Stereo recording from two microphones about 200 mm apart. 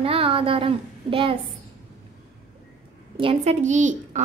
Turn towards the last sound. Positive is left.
turn(degrees=-35)  # may be behind; listen again after turning